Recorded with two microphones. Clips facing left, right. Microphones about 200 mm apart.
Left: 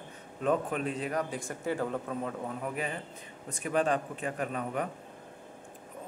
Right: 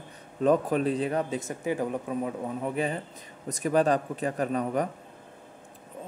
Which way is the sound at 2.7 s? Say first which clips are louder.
Right 6 dB; 35° right (ahead or behind).